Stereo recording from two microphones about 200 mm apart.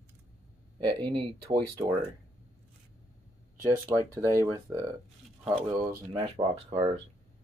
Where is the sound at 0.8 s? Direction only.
25° right (ahead or behind).